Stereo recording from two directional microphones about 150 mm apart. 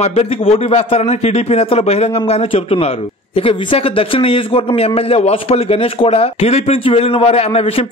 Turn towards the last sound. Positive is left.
turn(degrees=40)  # may be behind; listen again after turning